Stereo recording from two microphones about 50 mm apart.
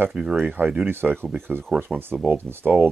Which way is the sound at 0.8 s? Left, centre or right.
Right.